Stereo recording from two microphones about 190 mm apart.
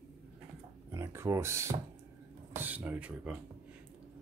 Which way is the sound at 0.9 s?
15° right (ahead or behind).